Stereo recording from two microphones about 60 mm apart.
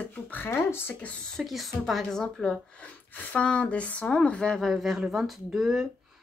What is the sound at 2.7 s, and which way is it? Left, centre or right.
Speech, left.